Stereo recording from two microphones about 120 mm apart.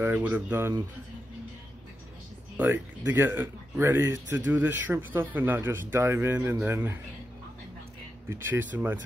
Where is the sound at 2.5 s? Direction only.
15° right (ahead or behind).